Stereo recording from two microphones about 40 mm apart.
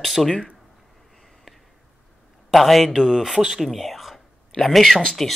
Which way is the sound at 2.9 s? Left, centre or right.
Centre.